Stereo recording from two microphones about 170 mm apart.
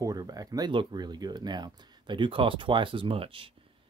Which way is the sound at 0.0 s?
20° right (ahead or behind).